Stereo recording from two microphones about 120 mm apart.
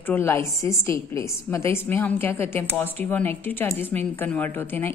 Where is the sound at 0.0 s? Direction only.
20° left (ahead or behind).